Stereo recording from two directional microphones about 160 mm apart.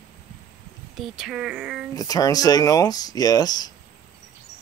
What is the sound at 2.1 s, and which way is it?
Speech, 25° left (ahead or behind).